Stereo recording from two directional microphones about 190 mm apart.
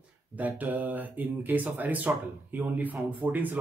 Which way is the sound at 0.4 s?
10° right (ahead or behind).